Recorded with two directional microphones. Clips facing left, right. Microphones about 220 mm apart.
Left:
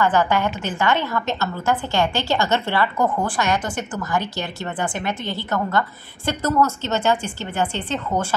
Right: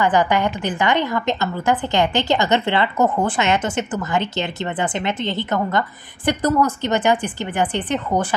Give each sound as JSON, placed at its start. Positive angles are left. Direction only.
{"t": 0.0, "sound": "a woman's voice", "side_deg": -15}